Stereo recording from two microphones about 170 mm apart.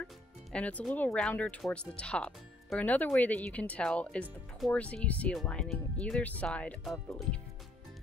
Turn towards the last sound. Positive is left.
turn(degrees=0)  # may be behind; listen again after turning